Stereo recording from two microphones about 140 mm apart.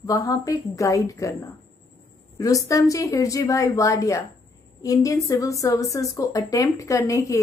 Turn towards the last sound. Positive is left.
turn(degrees=20)  # may be behind; listen again after turning